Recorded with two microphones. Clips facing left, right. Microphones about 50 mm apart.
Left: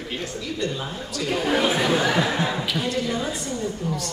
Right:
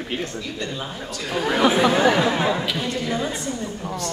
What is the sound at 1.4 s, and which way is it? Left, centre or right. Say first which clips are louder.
Speech: right 4 dB; right.